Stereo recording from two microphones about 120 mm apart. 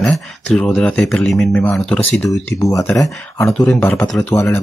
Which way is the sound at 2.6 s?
25° left (ahead or behind).